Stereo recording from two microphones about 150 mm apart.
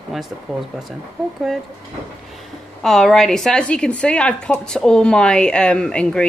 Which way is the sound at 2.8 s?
Centre (ahead or behind).